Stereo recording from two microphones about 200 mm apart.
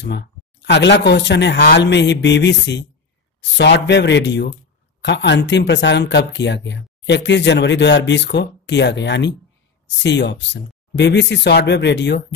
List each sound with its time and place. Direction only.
0.0 s speech: 60° left (ahead or behind)